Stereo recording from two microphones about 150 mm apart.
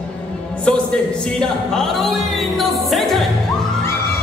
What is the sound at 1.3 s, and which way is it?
Music, 5° left (ahead or behind).